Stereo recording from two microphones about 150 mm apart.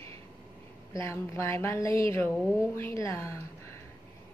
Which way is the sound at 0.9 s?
20° left (ahead or behind).